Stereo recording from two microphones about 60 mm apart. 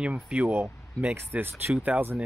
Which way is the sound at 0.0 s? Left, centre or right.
Right.